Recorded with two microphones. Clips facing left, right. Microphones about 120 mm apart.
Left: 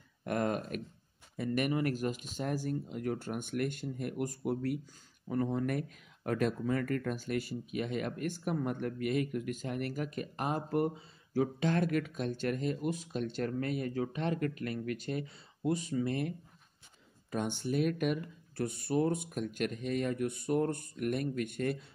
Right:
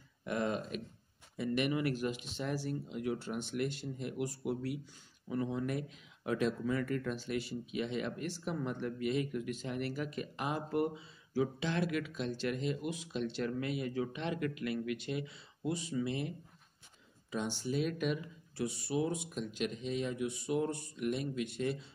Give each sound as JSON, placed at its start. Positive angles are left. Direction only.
{"t": 0.2, "sound": "speech", "side_deg": 50}